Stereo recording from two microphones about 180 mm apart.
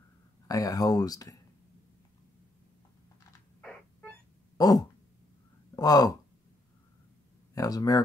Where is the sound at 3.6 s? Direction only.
5° left (ahead or behind).